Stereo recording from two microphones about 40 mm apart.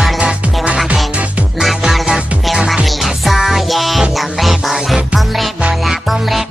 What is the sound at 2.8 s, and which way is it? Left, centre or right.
Music, centre.